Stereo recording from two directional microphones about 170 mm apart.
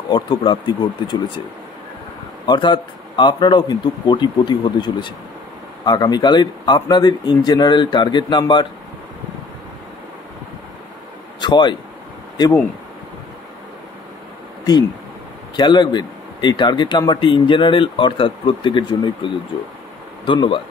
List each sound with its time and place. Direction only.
0.1 s speech: 30° left (ahead or behind)
2.4 s speech: 30° left (ahead or behind)
11.4 s speech: 25° left (ahead or behind)
15.5 s speech: 25° left (ahead or behind)